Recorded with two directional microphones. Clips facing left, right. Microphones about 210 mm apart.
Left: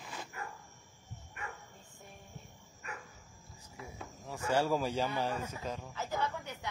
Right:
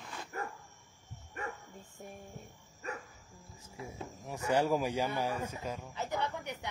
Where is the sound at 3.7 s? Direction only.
25° right (ahead or behind).